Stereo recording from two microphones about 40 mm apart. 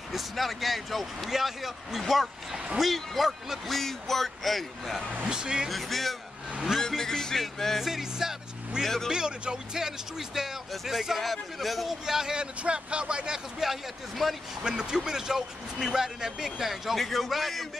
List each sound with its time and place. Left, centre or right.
0.1 s speech: centre
5.2 s speech: centre
5.7 s speech: centre
7.8 s speech: centre
8.8 s speech: centre
9.1 s speech: centre
12.1 s speech: centre
13.6 s speech: centre
14.6 s speech: centre